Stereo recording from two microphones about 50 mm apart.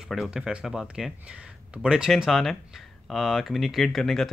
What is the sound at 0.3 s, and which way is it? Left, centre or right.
Speech, centre.